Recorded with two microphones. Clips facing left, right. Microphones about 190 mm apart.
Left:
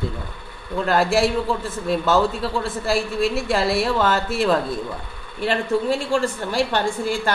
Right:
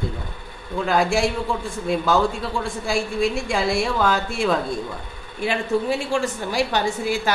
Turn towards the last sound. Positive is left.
turn(degrees=0)  # may be behind; listen again after turning